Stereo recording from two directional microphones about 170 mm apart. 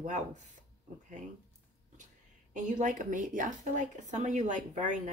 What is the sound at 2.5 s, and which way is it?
A woman's voice, 50° right (ahead or behind).